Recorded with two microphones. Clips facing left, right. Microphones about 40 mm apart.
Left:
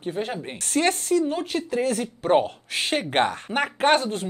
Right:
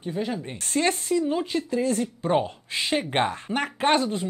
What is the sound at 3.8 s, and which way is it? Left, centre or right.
Speech, left.